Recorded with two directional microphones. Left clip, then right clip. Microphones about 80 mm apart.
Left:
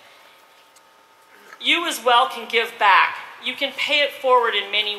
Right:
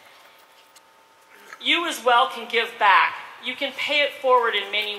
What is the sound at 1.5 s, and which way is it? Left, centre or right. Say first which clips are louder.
A man's voice: left 2 dB; left.